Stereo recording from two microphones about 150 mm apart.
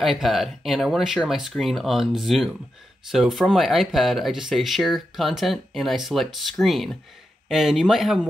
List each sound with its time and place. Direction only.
0.0 s speech: centre (ahead or behind)